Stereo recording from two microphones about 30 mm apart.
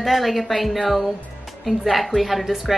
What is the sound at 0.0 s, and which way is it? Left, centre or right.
A woman's voice, centre.